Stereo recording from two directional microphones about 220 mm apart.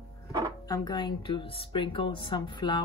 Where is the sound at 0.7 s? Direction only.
20° left (ahead or behind).